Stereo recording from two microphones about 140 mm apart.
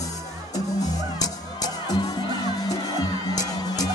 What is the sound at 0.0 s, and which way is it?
Music, 25° left (ahead or behind).